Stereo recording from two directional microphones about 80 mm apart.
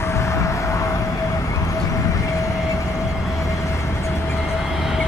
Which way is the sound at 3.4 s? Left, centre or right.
Left.